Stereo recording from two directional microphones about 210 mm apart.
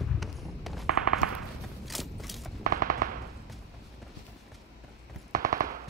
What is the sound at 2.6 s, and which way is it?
Machine gun, 40° right (ahead or behind).